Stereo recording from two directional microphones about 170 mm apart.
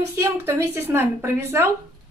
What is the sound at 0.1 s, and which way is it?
A woman's voice, 15° right (ahead or behind).